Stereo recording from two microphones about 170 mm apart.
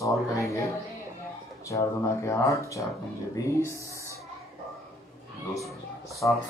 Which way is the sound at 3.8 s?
15° right (ahead or behind).